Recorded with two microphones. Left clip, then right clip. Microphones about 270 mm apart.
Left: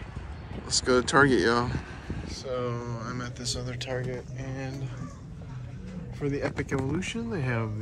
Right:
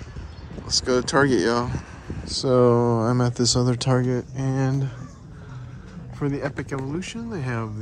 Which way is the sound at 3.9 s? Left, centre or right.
Right.